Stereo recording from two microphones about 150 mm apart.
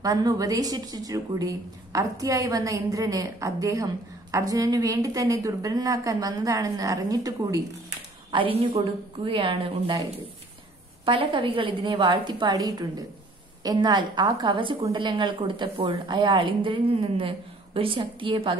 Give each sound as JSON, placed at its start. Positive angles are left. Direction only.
{"t": 0.0, "sound": "speech", "side_deg": -25}
{"t": 8.3, "sound": "a woman's voice", "side_deg": -35}
{"t": 11.1, "sound": "a woman's voice", "side_deg": -35}